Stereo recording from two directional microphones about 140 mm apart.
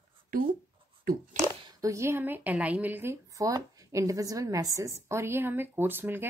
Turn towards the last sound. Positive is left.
turn(degrees=-15)  # may be behind; listen again after turning